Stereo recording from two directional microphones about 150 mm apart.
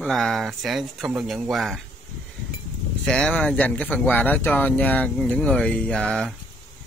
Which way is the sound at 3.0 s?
5° left (ahead or behind).